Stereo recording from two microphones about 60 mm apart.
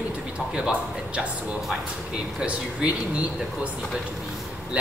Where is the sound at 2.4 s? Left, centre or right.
Right.